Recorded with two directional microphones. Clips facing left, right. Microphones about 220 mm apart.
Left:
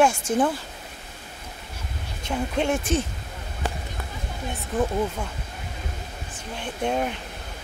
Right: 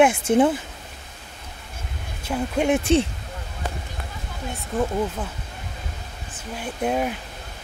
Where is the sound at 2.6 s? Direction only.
20° right (ahead or behind).